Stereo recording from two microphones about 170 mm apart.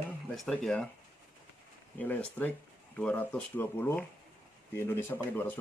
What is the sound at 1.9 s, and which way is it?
Speech, 10° left (ahead or behind).